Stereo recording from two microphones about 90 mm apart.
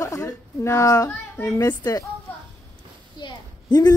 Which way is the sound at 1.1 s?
25° left (ahead or behind).